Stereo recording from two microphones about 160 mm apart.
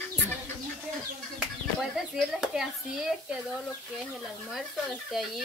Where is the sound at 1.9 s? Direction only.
5° right (ahead or behind).